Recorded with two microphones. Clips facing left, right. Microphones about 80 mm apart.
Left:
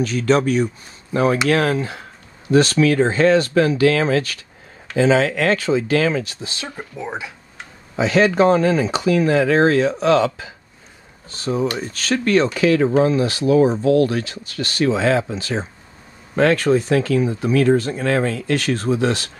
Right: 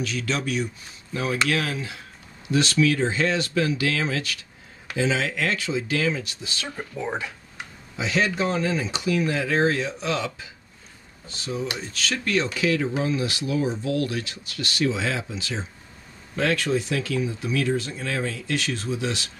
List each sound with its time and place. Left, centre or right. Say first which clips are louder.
0.0 s speech: left 10 dB; left
6.7 s speech: right 1 dB; centre
8.0 s speech: left 9 dB; left
11.2 s speech: left 8 dB; left